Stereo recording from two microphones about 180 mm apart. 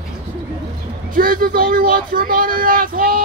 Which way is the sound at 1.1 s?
50° right (ahead or behind).